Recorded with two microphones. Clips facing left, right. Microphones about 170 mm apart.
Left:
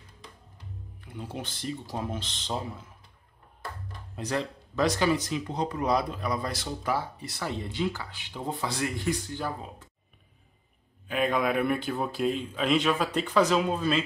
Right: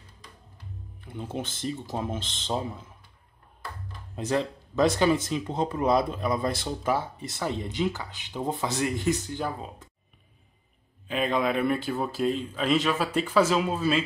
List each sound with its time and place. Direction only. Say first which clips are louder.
1.0 s speech: right 4 dB; 25° right (ahead or behind)
4.1 s speech: right 4 dB; 25° right (ahead or behind)
11.1 s speech: even; centre (ahead or behind)